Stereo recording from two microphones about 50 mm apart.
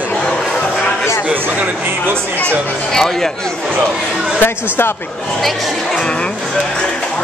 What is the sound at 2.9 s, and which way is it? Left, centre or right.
Speech, centre.